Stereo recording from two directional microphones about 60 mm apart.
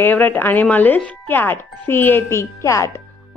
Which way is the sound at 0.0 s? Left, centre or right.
Left.